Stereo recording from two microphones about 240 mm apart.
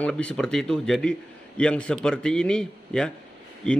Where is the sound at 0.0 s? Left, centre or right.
Centre.